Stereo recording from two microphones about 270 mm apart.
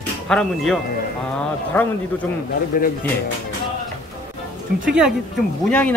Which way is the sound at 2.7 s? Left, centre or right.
Left.